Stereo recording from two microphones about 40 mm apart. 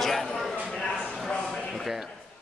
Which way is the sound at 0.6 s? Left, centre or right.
Left.